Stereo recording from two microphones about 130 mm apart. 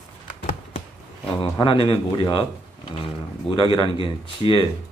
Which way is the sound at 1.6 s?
40° left (ahead or behind).